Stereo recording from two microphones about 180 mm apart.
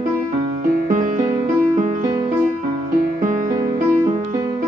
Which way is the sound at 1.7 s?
45° right (ahead or behind).